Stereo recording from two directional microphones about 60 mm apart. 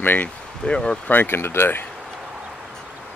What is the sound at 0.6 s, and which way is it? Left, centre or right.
Speech, centre.